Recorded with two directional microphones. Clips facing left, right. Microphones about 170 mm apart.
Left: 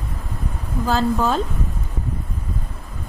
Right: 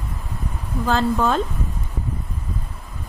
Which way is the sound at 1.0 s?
5° left (ahead or behind).